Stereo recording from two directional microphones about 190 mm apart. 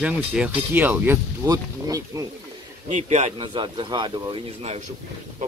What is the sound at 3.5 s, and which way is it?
Speech, 25° right (ahead or behind).